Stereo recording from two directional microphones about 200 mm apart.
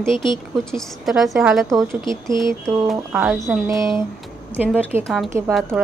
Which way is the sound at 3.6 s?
15° right (ahead or behind).